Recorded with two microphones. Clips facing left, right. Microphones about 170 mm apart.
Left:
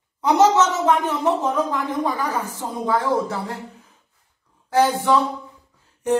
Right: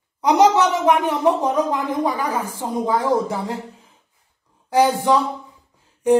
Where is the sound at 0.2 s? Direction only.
15° right (ahead or behind).